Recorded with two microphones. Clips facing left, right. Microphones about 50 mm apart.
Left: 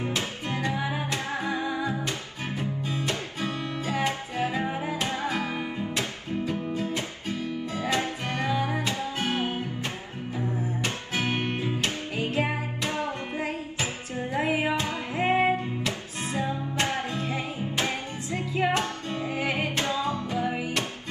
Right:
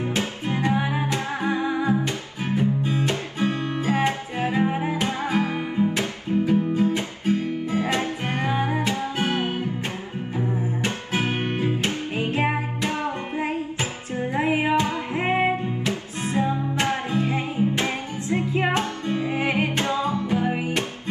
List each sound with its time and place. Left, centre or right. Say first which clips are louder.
0.0 s music: right 4 dB; right